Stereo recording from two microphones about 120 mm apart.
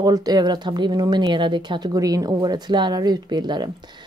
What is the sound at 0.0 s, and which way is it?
Speech, 35° right (ahead or behind).